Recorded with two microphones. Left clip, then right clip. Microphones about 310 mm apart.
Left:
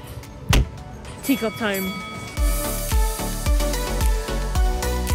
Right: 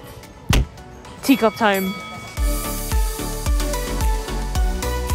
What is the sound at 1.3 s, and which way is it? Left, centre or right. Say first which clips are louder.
Speech: right 7 dB; centre.